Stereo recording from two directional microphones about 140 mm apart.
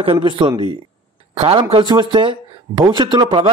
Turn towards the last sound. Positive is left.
turn(degrees=-35)  # may be behind; listen again after turning